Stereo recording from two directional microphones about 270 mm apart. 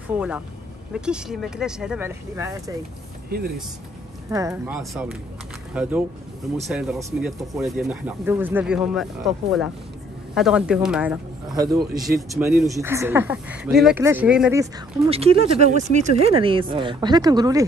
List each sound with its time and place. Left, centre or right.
0.9 s speech: centre
3.3 s speech: right
4.3 s speech: centre
12.2 s speech: centre
12.6 s speech: centre
15.0 s speech: right